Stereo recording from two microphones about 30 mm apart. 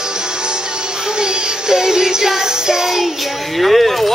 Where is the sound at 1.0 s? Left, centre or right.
Right.